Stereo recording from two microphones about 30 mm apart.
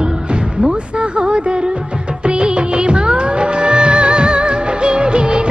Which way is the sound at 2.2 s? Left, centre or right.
Right.